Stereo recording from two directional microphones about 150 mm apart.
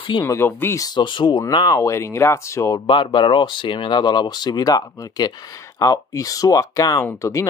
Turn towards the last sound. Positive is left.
turn(degrees=20)  # may be behind; listen again after turning